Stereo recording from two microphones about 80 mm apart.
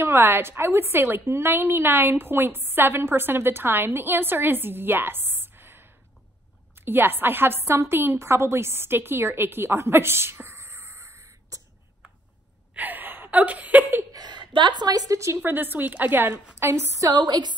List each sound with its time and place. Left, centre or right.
0.0 s a woman's voice: right
12.7 s speech: right
14.1 s a woman's voice: right
15.4 s a woman's voice: right
17.1 s a woman's voice: right